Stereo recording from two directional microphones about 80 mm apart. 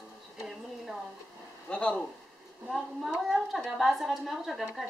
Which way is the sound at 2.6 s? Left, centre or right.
Centre.